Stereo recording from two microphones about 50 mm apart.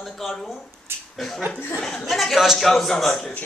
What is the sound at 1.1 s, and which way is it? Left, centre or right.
A woman's voice, centre.